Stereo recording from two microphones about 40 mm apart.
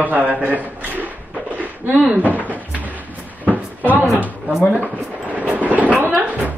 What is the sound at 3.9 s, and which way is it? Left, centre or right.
Speech, right.